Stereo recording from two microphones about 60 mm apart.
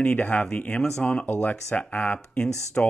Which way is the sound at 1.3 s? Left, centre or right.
Left.